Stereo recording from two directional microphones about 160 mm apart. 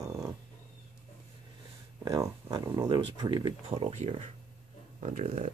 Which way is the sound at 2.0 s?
25° right (ahead or behind).